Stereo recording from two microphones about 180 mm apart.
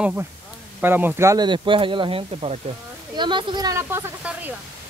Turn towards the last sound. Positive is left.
turn(degrees=-10)  # may be behind; listen again after turning